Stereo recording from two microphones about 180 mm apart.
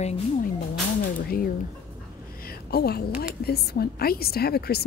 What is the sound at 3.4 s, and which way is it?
A woman's voice, 60° left (ahead or behind).